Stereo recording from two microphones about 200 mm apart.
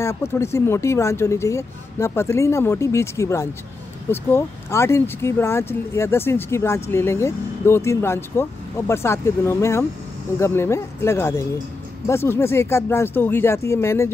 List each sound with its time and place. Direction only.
0.0 s speech: 15° left (ahead or behind)